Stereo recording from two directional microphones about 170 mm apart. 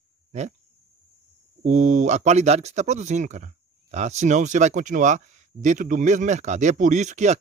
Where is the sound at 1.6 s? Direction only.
45° right (ahead or behind).